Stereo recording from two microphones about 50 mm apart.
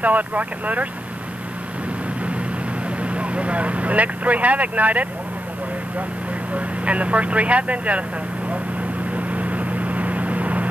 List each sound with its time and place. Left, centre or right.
0.0 s speech: right
3.0 s speech: right
6.5 s speech: right
9.1 s vehicle: right